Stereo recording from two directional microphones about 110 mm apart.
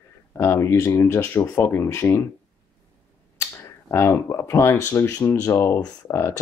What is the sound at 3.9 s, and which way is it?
Speech, 25° left (ahead or behind).